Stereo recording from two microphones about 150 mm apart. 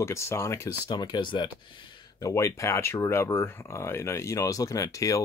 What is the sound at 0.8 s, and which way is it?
Speech, 30° left (ahead or behind).